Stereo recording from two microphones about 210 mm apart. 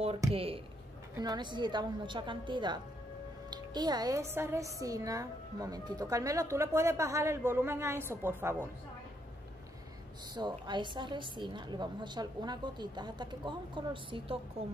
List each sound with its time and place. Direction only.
0.3 s a woman's voice: 25° right (ahead or behind); by 8.5 s 10° right (ahead or behind)
10.3 s a woman's voice: 20° right (ahead or behind)